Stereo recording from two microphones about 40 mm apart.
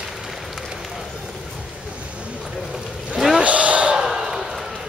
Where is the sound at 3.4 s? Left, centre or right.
Right.